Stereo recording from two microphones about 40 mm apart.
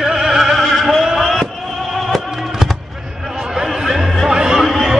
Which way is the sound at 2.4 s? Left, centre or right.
Centre.